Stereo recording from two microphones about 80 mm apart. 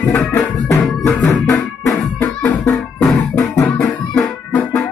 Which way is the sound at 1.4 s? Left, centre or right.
Left.